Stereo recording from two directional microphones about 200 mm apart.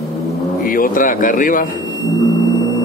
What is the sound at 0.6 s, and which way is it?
Speech, 45° left (ahead or behind).